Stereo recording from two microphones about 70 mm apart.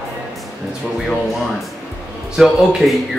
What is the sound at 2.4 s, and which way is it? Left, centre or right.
Speech, centre.